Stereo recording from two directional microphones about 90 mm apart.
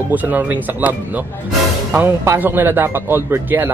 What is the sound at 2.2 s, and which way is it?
Speech, 25° right (ahead or behind).